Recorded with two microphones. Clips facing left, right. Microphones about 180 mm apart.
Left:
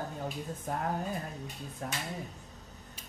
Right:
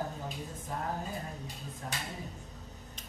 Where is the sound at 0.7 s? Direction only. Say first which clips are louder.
Left 4 dB; 60° left (ahead or behind).